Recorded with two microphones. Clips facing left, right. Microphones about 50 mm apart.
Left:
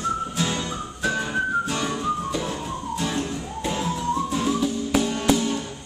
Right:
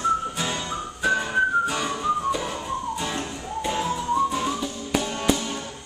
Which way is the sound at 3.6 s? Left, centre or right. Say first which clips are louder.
Even; centre.